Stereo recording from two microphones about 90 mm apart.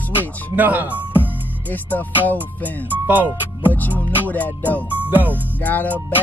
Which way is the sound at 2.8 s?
20° right (ahead or behind).